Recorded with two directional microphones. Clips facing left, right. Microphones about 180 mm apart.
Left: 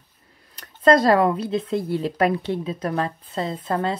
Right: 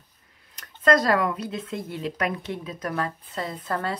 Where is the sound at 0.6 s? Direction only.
30° left (ahead or behind).